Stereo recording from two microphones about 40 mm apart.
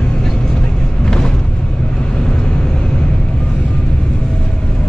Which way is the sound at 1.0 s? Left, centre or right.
Centre.